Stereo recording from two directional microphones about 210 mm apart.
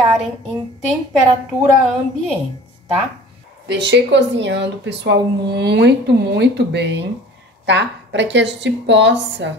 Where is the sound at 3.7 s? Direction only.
55° right (ahead or behind).